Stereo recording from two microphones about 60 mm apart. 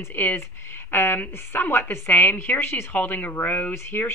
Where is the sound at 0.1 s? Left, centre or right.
Left.